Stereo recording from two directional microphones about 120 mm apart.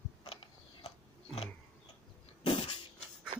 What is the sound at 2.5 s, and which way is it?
Vehicle, 45° left (ahead or behind).